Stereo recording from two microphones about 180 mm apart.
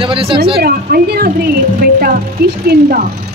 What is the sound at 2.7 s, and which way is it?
Speech, 55° right (ahead or behind).